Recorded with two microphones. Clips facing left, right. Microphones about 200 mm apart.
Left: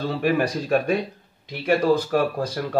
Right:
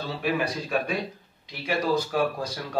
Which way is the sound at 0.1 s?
50° left (ahead or behind).